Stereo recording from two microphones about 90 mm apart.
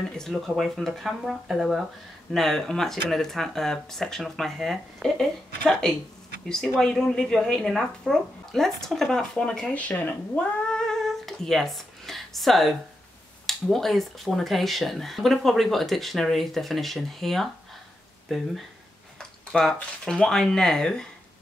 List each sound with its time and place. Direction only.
0.2 s speech: centre (ahead or behind)
9.8 s speech: 20° left (ahead or behind)
10.7 s a sound: 5° left (ahead or behind)
13.5 s speech: 5° left (ahead or behind)